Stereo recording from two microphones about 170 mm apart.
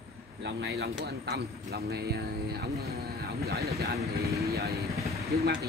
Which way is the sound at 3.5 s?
65° right (ahead or behind).